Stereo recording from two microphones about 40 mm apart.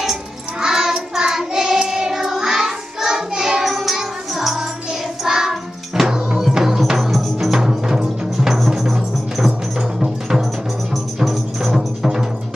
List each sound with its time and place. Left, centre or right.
0.6 s child singing: centre
1.1 s music: centre
6.1 s music: right
6.4 s music: centre
7.5 s music: centre